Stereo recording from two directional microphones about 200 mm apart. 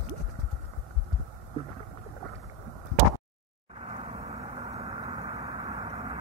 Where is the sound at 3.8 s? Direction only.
30° right (ahead or behind).